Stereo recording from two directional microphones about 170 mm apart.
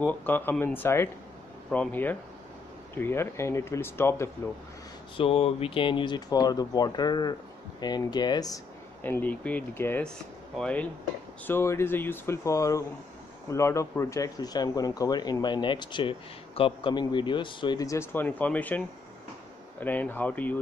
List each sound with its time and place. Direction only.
0.0 s speech: 10° left (ahead or behind)
5.1 s speech: 35° left (ahead or behind)
9.0 s speech: 10° left (ahead or behind)